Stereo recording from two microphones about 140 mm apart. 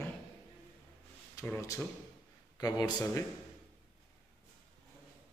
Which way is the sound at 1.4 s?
20° left (ahead or behind).